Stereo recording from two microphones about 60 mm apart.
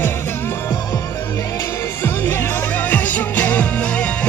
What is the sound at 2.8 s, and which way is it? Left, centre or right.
Music, left.